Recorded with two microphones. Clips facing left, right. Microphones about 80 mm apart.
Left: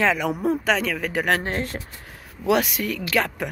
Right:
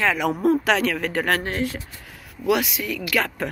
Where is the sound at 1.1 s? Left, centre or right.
Centre.